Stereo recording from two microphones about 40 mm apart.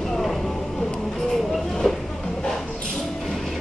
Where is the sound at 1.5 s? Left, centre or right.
Centre.